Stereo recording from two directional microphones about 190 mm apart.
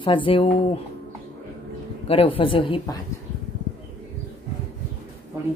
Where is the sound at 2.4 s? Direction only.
30° left (ahead or behind).